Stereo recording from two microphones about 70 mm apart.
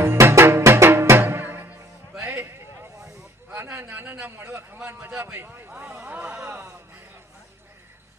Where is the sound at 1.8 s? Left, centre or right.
Right.